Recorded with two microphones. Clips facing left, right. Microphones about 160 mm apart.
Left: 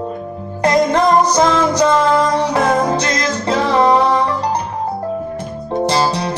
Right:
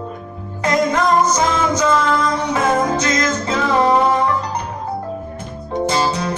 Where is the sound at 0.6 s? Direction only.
35° left (ahead or behind).